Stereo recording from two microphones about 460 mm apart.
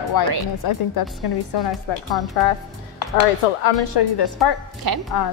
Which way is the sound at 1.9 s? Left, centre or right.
Left.